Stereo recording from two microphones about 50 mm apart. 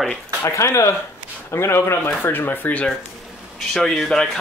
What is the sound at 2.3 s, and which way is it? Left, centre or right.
Speech, left.